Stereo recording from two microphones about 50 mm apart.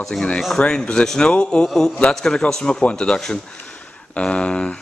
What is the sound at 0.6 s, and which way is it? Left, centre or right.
Speech, centre.